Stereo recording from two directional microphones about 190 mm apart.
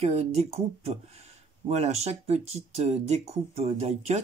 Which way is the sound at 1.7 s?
35° right (ahead or behind).